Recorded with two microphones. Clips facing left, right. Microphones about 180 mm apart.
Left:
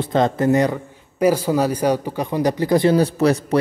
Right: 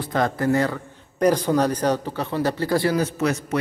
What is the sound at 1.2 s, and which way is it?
Speech, 5° left (ahead or behind).